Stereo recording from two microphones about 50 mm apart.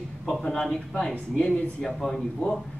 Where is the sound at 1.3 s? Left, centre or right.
Centre.